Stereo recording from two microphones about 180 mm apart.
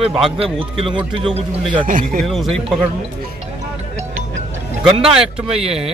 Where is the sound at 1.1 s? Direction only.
30° right (ahead or behind).